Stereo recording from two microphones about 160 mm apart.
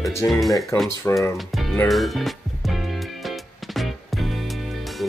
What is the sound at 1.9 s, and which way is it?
Music, centre (ahead or behind).